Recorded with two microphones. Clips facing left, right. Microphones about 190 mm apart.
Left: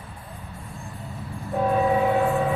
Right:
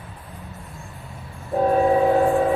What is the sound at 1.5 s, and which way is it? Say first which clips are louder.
Train: right 4 dB; 35° right (ahead or behind).